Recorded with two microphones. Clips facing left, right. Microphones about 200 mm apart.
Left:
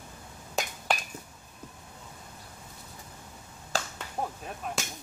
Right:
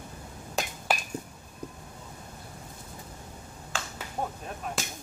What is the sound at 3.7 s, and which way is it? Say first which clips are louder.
Finger snapping: left 4 dB; 40° left (ahead or behind).